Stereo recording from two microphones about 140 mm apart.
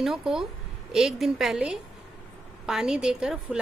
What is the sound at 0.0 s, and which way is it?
A woman's voice, centre (ahead or behind).